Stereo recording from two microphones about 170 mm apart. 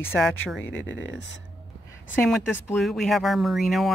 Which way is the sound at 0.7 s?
90° left.